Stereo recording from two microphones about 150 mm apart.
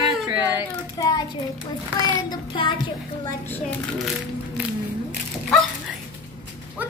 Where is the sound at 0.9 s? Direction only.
30° left (ahead or behind).